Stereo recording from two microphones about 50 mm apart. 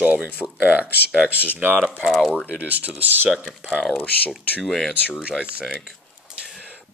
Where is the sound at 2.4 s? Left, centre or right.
Right.